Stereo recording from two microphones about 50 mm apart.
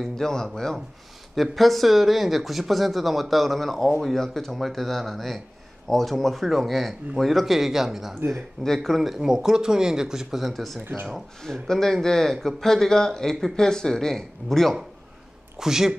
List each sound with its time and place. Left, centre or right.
0.0 s speech: centre
1.3 s speech: centre
8.3 s speech: centre
10.4 s speech: centre
10.8 s speech: right
11.4 s speech: centre
15.6 s speech: centre